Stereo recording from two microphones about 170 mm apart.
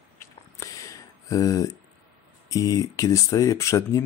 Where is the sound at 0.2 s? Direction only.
20° left (ahead or behind).